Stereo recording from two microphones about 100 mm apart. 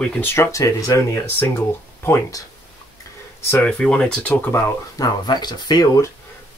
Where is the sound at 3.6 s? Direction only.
10° left (ahead or behind).